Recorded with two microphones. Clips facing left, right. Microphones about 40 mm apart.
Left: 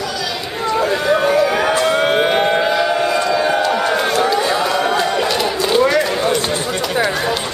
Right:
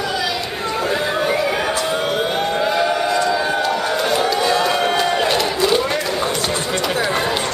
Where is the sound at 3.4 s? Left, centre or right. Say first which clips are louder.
Left 3 dB; centre.